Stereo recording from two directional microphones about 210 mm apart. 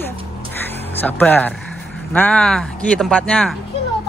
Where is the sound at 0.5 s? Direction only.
10° left (ahead or behind).